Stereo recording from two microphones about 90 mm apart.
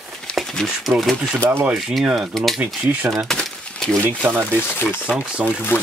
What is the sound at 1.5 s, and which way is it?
Speech, 20° right (ahead or behind).